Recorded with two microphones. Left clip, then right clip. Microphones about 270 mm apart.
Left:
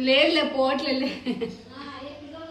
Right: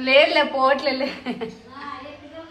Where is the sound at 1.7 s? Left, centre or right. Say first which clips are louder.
Right 4 dB; centre.